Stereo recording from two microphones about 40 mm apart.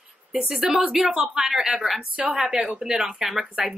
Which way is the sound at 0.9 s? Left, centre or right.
Centre.